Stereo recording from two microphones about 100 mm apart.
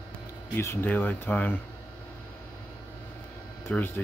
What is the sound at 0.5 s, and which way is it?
Speech, 25° left (ahead or behind).